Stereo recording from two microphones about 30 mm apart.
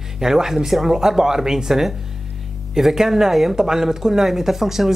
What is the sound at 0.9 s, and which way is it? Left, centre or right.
Speech, centre.